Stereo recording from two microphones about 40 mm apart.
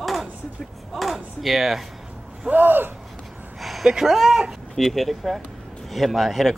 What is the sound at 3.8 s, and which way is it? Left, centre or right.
Speech, centre.